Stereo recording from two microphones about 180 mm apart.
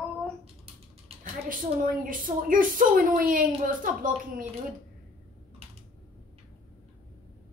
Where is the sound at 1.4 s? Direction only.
50° right (ahead or behind).